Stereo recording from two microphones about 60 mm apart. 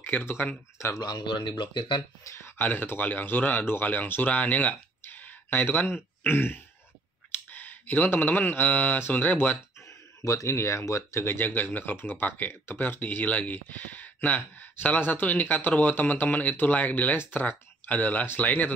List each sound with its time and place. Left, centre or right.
0.0 s speech: left
2.4 s speech: left
9.8 s a sound: left
10.5 s speech: left
11.2 s speech: left